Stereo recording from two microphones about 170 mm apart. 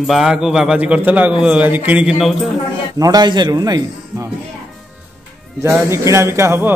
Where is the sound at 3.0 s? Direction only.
20° right (ahead or behind).